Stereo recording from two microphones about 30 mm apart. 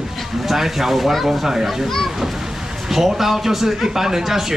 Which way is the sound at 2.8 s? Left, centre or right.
Centre.